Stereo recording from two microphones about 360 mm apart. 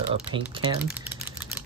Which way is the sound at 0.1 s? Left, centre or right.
Centre.